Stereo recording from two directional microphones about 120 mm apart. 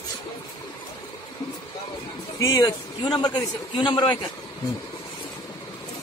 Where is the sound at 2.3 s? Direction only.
30° left (ahead or behind).